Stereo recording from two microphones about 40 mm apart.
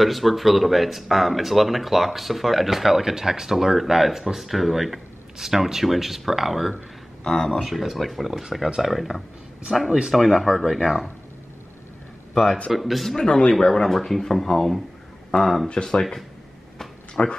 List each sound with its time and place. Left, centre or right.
0.0 s speech: centre
7.3 s speech: left
7.6 s speech: centre
9.7 s speech: centre
10.1 s speech: centre
12.7 s speech: centre
13.2 s speech: centre
13.6 s speech: centre
15.7 s speech: left
17.1 s speech: left